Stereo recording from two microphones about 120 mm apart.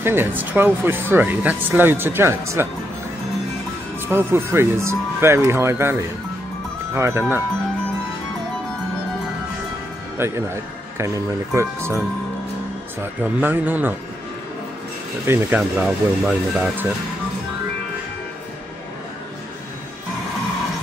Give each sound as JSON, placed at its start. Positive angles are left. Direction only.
{"t": 0.0, "sound": "speech", "side_deg": -20}
{"t": 4.1, "sound": "speech", "side_deg": -20}
{"t": 10.1, "sound": "a man's voice", "side_deg": -20}
{"t": 13.0, "sound": "speech", "side_deg": -15}
{"t": 15.3, "sound": "speech", "side_deg": -20}